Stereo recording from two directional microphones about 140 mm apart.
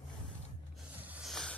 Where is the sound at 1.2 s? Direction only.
5° left (ahead or behind).